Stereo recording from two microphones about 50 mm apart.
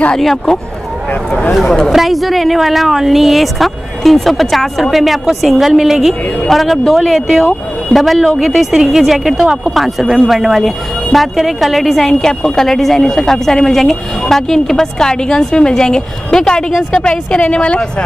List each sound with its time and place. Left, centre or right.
0.2 s a woman's voice: centre; by 18.0 s left